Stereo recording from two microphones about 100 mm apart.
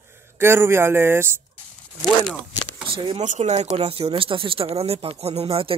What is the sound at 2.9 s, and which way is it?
Speech, 65° right (ahead or behind).